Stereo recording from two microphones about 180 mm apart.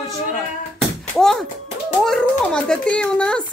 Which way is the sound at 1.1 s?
Centre (ahead or behind).